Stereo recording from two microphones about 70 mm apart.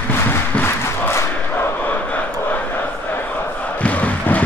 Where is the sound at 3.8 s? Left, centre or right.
Left.